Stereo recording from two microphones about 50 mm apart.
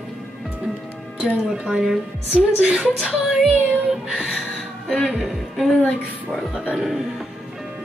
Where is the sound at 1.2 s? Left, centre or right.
Centre.